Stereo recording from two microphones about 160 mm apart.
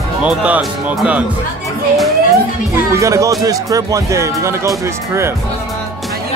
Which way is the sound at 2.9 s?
20° right (ahead or behind).